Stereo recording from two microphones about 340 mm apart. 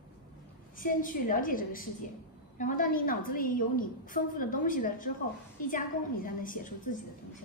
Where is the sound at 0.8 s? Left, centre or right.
Left.